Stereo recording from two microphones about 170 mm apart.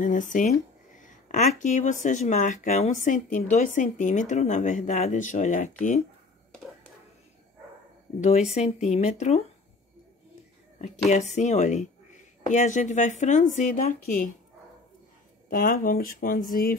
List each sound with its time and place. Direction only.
0.0 s speech: 50° left (ahead or behind)
6.5 s whispering: centre (ahead or behind)
8.2 s speech: 40° left (ahead or behind)
10.8 s speech: 45° left (ahead or behind)
15.5 s speech: 55° left (ahead or behind)